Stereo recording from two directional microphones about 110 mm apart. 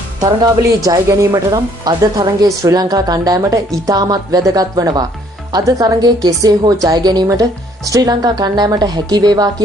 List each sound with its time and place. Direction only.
0.8 s speech: 30° right (ahead or behind)